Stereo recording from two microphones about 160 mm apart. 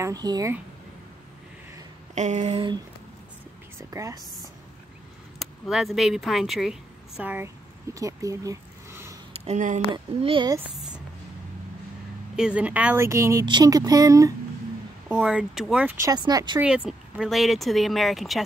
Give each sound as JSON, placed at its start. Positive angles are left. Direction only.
{"t": 0.0, "sound": "speech", "side_deg": -25}
{"t": 2.1, "sound": "a sound", "side_deg": -45}
{"t": 3.7, "sound": "speech", "side_deg": -20}
{"t": 5.4, "sound": "speech", "side_deg": 0}
{"t": 9.3, "sound": "a sound", "side_deg": -40}
{"t": 9.9, "sound": "a woman's voice", "side_deg": -30}
{"t": 12.4, "sound": "speech", "side_deg": -5}
{"t": 15.0, "sound": "speech", "side_deg": -5}
{"t": 16.1, "sound": "speech", "side_deg": -25}
{"t": 16.5, "sound": "speech", "side_deg": -5}